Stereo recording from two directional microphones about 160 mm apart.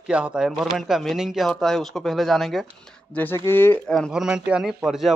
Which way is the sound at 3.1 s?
10° left (ahead or behind).